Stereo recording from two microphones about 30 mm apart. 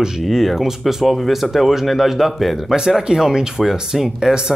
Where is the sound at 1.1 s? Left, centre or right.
Centre.